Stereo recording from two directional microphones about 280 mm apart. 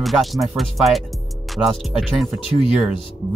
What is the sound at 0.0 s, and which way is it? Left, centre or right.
Speech, centre.